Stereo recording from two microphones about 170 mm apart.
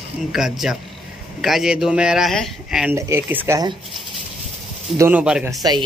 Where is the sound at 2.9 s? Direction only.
15° right (ahead or behind).